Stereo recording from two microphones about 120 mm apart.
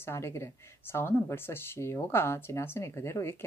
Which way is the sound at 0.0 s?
20° left (ahead or behind).